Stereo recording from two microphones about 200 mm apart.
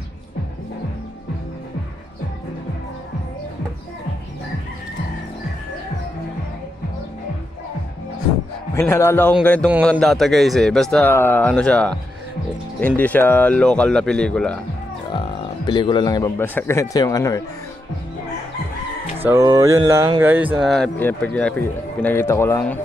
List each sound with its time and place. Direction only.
8.7 s a man's voice: 15° left (ahead or behind)
15.0 s a man's voice: 25° left (ahead or behind)
19.2 s speech: 15° right (ahead or behind); by 22.8 s 10° left (ahead or behind)